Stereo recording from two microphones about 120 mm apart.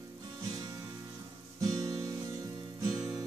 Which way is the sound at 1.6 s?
30° right (ahead or behind).